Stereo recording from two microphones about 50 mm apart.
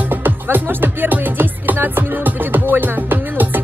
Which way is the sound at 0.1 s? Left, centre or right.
Right.